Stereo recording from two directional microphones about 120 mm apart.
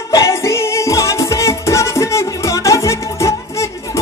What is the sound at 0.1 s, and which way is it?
Music, 25° left (ahead or behind).